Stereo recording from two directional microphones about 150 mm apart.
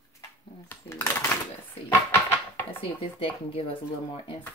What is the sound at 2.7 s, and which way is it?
Speech, 35° left (ahead or behind).